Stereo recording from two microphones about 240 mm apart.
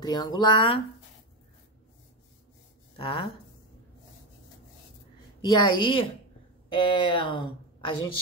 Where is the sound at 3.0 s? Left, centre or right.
Left.